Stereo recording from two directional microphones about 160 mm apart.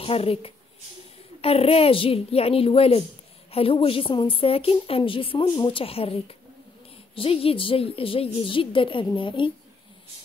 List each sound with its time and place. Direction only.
0.0 s a woman's voice: 35° left (ahead or behind)